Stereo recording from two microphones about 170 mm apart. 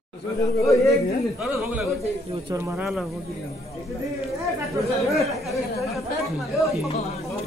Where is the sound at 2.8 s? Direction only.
5° right (ahead or behind).